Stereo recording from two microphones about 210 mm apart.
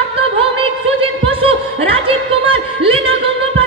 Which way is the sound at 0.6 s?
25° right (ahead or behind).